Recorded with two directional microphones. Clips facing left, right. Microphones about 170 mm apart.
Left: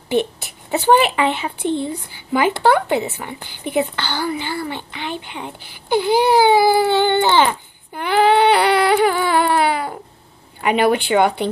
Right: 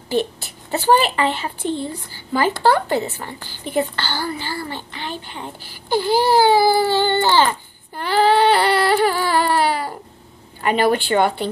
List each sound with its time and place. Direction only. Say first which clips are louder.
0.1 s a woman's voice: left 2 dB; 20° left (ahead or behind)
4.6 s baby cry: left 3 dB; 15° left (ahead or behind)
10.6 s speech: left 1 dB; 10° left (ahead or behind)